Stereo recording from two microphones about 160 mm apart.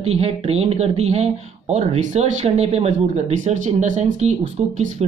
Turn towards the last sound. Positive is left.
turn(degrees=-45)  # may be behind; listen again after turning